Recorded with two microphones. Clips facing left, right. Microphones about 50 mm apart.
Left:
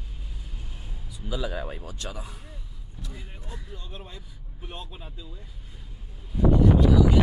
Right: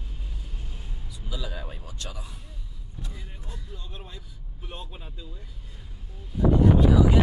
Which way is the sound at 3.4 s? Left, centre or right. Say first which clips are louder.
Left 2 dB; left.